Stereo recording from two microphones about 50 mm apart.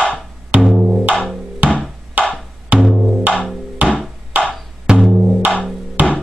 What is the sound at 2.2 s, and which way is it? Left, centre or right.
Music, right.